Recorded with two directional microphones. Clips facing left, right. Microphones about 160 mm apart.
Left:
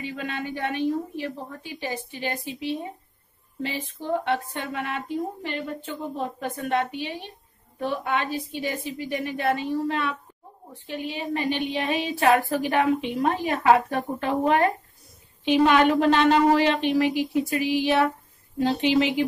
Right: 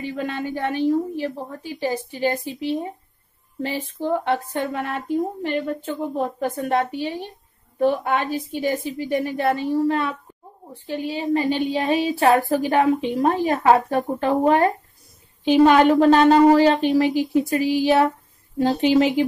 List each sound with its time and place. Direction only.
0.0 s a woman's voice: 40° right (ahead or behind)
6.7 s a woman's voice: 40° right (ahead or behind)